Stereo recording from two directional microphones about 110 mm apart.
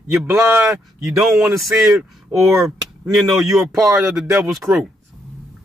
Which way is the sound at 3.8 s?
20° right (ahead or behind).